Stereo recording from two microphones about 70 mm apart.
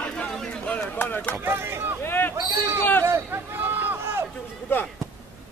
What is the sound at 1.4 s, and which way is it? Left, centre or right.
Boat, right.